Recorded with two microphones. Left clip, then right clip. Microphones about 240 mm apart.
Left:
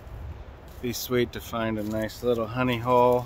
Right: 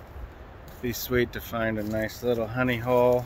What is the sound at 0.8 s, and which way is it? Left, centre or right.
Speech, centre.